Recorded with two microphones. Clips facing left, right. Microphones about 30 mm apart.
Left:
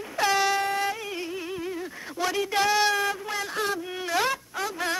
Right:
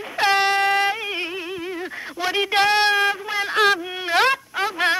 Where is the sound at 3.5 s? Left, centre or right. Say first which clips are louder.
Right 12 dB; right.